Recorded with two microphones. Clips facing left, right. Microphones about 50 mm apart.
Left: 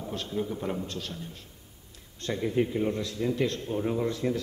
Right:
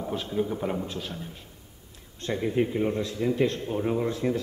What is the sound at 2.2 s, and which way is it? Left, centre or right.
A man's voice, centre.